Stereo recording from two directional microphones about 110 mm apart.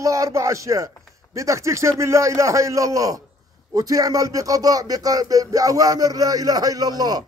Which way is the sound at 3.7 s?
30° right (ahead or behind).